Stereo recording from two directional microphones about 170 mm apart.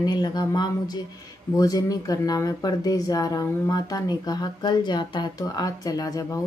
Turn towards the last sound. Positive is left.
turn(degrees=20)  # may be behind; listen again after turning